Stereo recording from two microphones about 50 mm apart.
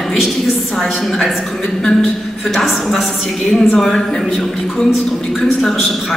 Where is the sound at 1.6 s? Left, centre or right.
Centre.